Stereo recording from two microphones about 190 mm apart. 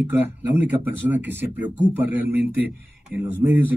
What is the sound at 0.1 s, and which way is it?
A man's voice, 10° right (ahead or behind).